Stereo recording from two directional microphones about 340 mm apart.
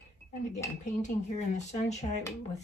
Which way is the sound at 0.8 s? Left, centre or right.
Left.